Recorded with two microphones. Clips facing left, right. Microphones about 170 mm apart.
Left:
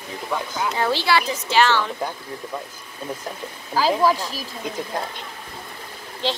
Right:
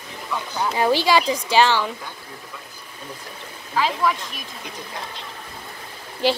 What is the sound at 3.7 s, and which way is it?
Speech, 35° left (ahead or behind).